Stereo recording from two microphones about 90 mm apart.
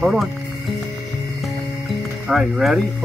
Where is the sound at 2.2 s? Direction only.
5° right (ahead or behind).